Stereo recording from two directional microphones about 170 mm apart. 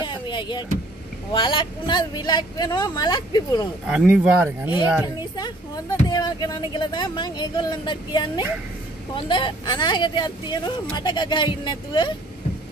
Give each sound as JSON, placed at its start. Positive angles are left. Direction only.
{"t": 0.0, "sound": "vehicle", "side_deg": 25}
{"t": 1.3, "sound": "speech", "side_deg": 30}
{"t": 3.8, "sound": "speech", "side_deg": -5}
{"t": 5.0, "sound": "speech", "side_deg": 25}